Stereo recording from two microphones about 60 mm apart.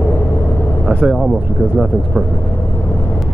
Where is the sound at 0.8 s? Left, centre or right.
Centre.